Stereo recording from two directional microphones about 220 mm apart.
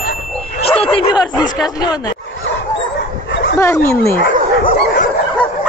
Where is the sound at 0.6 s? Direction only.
25° left (ahead or behind).